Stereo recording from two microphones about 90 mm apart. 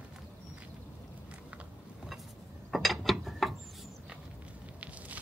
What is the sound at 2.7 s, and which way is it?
Pulleys, centre (ahead or behind).